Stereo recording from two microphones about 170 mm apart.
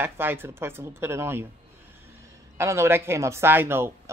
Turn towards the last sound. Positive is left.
turn(degrees=-15)  # may be behind; listen again after turning